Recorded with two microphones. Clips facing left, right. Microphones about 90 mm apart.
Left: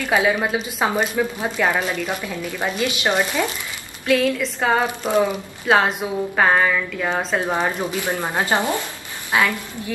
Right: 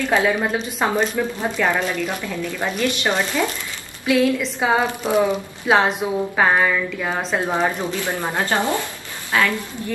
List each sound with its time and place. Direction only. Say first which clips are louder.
0.1 s speech: left 1 dB; 5° left (ahead or behind)
4.0 s a woman's voice: right 1 dB; 5° right (ahead or behind)
8.0 s speech: left 1 dB; 20° left (ahead or behind)